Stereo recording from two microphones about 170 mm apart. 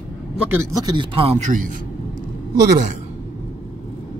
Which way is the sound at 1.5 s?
55° right (ahead or behind).